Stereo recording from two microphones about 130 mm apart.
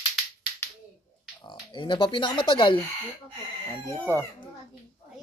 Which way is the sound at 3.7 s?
15° left (ahead or behind).